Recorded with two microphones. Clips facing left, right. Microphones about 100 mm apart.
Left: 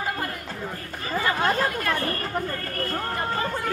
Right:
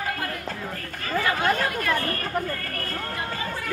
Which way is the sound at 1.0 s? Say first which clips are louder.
Even; 25° left (ahead or behind).